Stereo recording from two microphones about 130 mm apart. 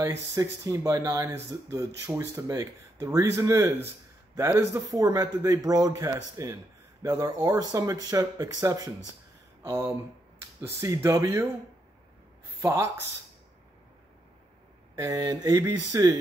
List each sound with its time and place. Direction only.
0.0 s a man's voice: 25° right (ahead or behind)
9.6 s a sound: 25° right (ahead or behind)
10.6 s a man's voice: 20° right (ahead or behind)
12.5 s speech: 25° right (ahead or behind)
15.0 s a man's voice: 25° right (ahead or behind)